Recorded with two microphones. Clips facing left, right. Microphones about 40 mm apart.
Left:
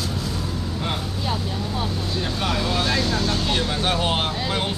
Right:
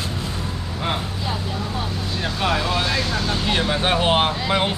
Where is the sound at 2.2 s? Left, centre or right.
Right.